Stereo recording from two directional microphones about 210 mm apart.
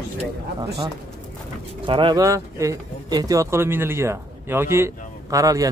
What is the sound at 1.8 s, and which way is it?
Speech, 25° right (ahead or behind).